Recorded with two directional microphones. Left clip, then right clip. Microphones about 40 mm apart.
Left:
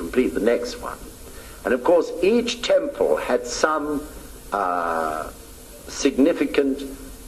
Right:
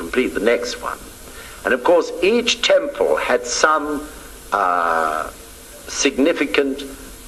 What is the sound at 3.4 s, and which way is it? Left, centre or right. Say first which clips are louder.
Speech: right 5 dB; right.